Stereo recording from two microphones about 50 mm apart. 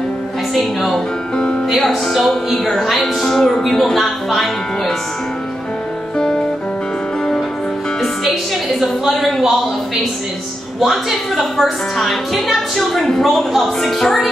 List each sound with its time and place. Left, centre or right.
0.6 s a woman's voice: centre
1.3 s music: centre
1.8 s a woman's voice: centre
6.1 s music: centre
8.0 s music: centre
9.0 s speech: centre
10.8 s a woman's voice: centre